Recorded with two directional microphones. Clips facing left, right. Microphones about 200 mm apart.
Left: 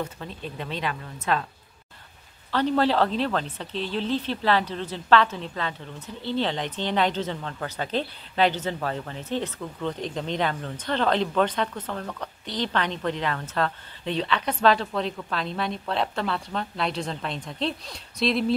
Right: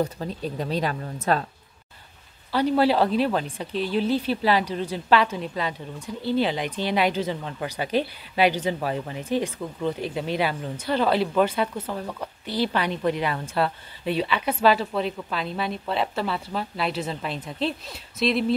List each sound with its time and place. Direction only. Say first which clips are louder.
0.0 s speech: right 6 dB; 35° right (ahead or behind)
2.5 s speech: right 2 dB; 10° right (ahead or behind)